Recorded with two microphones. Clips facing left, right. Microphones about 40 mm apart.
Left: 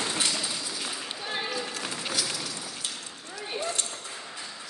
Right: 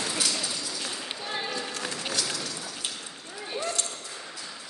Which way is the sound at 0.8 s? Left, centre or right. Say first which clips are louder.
Even; centre.